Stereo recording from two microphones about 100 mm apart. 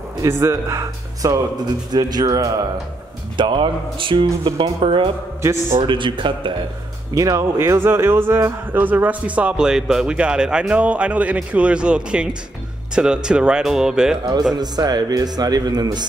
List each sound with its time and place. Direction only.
0.2 s speech: 30° right (ahead or behind)
3.3 s speech: 55° right (ahead or behind)
5.8 s speech: 55° right (ahead or behind)
7.2 s speech: 35° right (ahead or behind); by 14.1 s 5° right (ahead or behind)
14.5 s a man's voice: 40° right (ahead or behind)